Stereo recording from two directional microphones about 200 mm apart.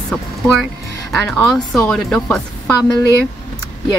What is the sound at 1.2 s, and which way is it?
Speech, 10° left (ahead or behind).